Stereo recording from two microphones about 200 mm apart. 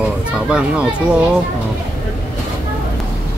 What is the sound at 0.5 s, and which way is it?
Speech, 5° right (ahead or behind).